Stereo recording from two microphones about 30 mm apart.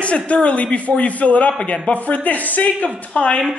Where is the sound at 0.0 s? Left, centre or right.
Left.